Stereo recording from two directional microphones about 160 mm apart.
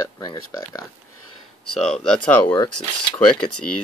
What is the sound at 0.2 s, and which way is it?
Speech, 20° left (ahead or behind).